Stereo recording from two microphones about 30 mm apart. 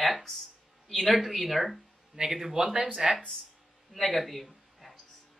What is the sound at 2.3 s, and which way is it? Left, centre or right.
Speech, centre.